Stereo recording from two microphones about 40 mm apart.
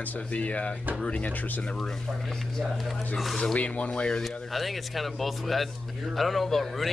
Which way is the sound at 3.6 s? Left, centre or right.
Left.